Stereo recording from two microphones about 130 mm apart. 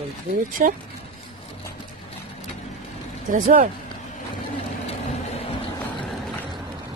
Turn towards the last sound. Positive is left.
turn(degrees=50)  # may be behind; listen again after turning